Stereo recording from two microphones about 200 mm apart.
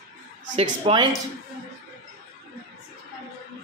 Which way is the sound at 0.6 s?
30° right (ahead or behind).